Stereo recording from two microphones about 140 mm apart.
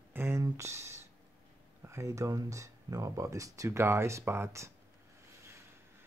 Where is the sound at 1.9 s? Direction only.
20° right (ahead or behind).